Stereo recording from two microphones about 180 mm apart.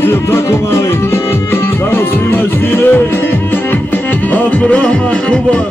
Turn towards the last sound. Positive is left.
turn(degrees=5)  # may be behind; listen again after turning